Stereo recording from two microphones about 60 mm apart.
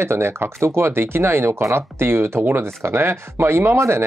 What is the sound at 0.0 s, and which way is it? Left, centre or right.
Speech, right.